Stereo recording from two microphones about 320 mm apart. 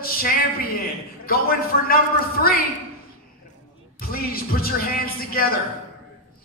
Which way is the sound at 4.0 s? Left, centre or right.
Left.